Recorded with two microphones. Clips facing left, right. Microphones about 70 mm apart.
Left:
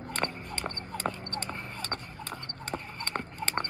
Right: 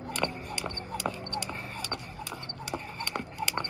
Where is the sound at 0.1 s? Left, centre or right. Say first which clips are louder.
Right 1 dB; left.